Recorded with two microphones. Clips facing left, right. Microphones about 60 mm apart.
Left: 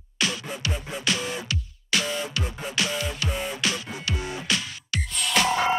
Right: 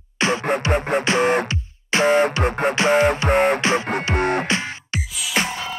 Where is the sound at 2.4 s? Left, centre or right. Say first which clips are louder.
Right 13 dB; right.